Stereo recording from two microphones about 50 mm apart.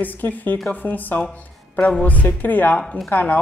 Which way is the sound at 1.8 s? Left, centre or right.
Left.